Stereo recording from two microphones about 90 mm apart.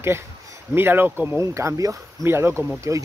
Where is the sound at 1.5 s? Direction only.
35° right (ahead or behind).